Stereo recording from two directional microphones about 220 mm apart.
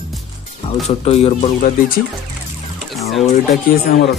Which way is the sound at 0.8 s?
30° left (ahead or behind).